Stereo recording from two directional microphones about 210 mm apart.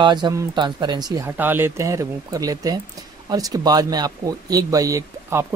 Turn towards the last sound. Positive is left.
turn(degrees=-15)  # may be behind; listen again after turning